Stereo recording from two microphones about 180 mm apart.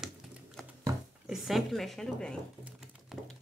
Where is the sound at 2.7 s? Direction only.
5° right (ahead or behind).